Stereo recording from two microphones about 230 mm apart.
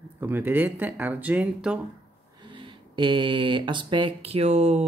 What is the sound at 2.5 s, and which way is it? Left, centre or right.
Speech, right.